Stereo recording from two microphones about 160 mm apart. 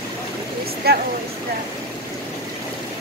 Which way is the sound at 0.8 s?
75° right (ahead or behind).